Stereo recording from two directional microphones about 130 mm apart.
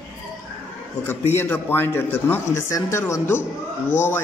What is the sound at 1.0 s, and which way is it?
A man's voice, 20° left (ahead or behind).